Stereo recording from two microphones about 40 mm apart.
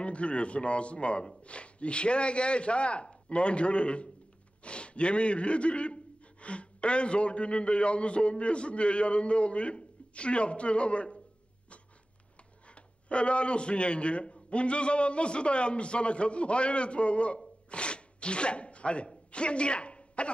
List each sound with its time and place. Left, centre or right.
0.0 s a man's voice: left
12.6 s a man's voice: left
17.6 s a sound: left
19.3 s a woman's voice: left